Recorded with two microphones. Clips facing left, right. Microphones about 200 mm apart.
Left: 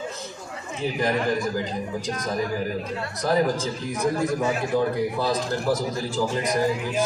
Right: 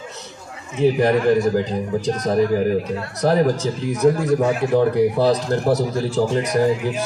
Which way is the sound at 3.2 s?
65° right (ahead or behind).